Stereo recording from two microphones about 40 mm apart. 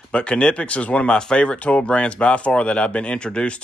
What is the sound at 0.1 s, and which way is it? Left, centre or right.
Speech, left.